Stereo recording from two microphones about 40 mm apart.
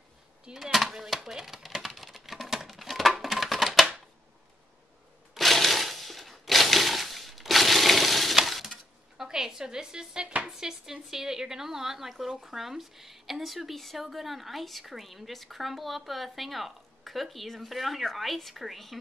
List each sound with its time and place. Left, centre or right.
0.7 s chopping: centre
2.0 s a sound: centre
5.3 s a sound: centre
8.5 s glass: centre
9.2 s speech: centre
10.5 s a woman's voice: centre